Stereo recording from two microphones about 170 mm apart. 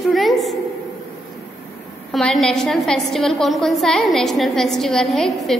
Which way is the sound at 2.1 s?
Centre (ahead or behind).